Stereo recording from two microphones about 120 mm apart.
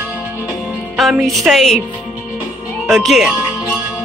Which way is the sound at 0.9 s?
Centre (ahead or behind).